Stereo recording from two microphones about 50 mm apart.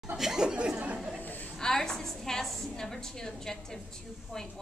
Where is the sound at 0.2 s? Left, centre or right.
Centre.